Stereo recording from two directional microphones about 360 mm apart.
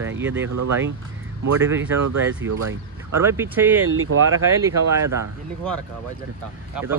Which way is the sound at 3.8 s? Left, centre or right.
Right.